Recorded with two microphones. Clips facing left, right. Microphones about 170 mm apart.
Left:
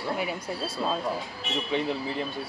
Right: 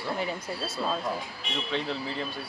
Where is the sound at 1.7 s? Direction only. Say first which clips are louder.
Left 4 dB; 15° left (ahead or behind).